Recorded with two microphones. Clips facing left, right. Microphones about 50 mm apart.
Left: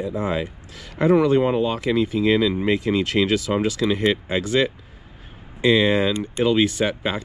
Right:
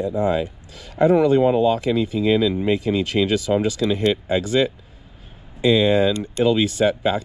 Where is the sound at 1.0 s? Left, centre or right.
Left.